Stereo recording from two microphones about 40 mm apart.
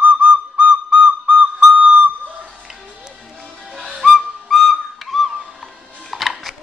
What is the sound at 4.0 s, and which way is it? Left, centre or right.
Whistle, centre.